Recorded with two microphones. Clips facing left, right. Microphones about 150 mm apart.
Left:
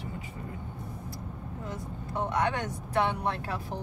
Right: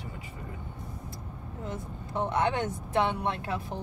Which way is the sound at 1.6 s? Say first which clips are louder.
Right 2 dB; 25° right (ahead or behind).